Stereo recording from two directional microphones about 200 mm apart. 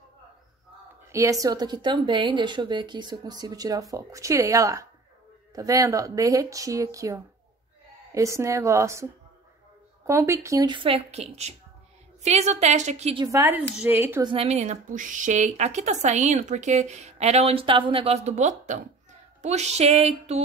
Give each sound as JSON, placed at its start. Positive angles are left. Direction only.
{"t": 1.1, "sound": "speech", "side_deg": -15}
{"t": 14.2, "sound": "a woman's voice", "side_deg": -30}